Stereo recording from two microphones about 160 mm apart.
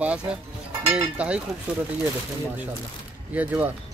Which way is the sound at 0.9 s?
10° right (ahead or behind).